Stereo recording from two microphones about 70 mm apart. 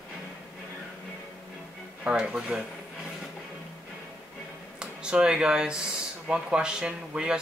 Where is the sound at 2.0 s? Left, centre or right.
Centre.